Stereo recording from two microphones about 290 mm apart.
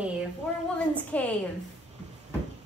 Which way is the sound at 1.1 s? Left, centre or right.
Centre.